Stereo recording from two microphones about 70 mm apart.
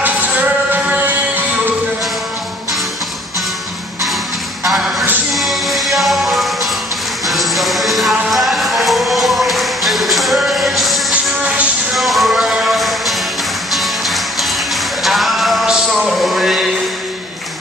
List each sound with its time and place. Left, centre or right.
0.0 s music: right
4.6 s a sound: centre
5.3 s music: centre
11.4 s music: centre
11.9 s music: centre
15.0 s a sound: centre